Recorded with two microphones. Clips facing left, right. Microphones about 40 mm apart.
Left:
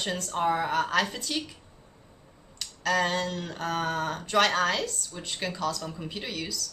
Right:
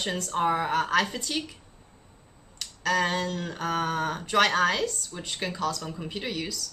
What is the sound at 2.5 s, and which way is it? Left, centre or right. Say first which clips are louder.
A woman's voice: even; centre.